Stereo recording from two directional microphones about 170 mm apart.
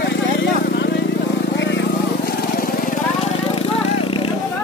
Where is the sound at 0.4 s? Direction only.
90° left.